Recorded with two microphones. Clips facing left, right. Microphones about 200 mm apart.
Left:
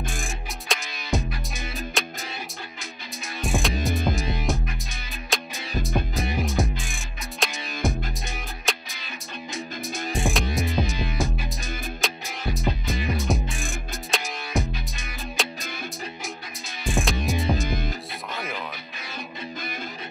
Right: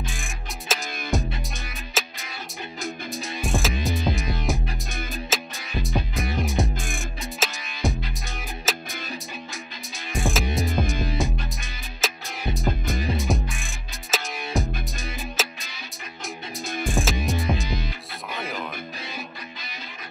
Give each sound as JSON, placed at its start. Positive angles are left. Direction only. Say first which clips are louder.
{"t": 0.1, "sound": "music", "louder": "left 3 dB", "side_deg": 0}
{"t": 3.4, "sound": "music", "louder": "left 1 dB", "side_deg": 0}
{"t": 10.1, "sound": "music", "louder": "right 1 dB", "side_deg": 0}
{"t": 16.8, "sound": "music", "louder": "left 1 dB", "side_deg": 0}
{"t": 17.6, "sound": "music", "louder": "left 2 dB", "side_deg": 50}